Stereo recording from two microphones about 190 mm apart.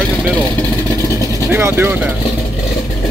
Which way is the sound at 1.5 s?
10° right (ahead or behind).